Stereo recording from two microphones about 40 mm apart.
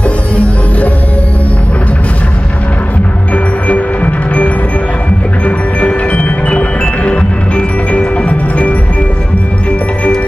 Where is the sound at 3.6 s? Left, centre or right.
Left.